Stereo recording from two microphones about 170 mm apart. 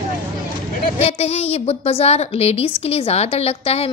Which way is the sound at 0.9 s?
40° left (ahead or behind).